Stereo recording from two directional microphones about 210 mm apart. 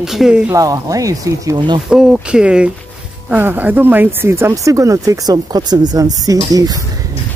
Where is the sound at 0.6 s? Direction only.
15° right (ahead or behind).